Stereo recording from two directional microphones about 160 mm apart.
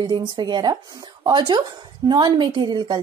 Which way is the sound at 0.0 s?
30° right (ahead or behind).